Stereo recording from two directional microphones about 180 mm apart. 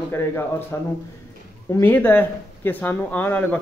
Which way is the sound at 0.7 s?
15° left (ahead or behind).